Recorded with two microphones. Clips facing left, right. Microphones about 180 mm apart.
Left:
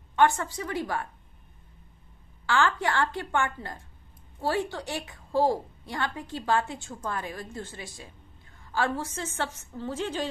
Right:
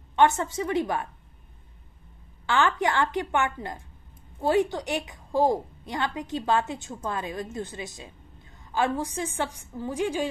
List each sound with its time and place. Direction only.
0.1 s a woman's voice: 20° right (ahead or behind)
2.4 s a woman's voice: 20° right (ahead or behind)